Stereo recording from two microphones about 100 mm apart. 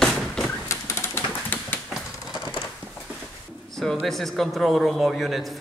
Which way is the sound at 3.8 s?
5° left (ahead or behind).